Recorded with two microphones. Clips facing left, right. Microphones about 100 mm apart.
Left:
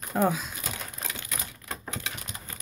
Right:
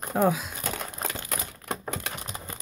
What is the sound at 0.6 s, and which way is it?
Crumpling, 45° right (ahead or behind).